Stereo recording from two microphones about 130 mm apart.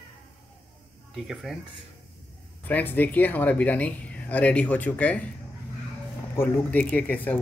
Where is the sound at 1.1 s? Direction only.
Centre (ahead or behind).